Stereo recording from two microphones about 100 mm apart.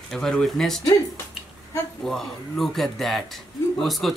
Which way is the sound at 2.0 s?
5° left (ahead or behind).